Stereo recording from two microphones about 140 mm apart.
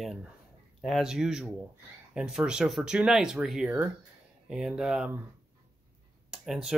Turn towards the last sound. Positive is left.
turn(degrees=-5)  # may be behind; listen again after turning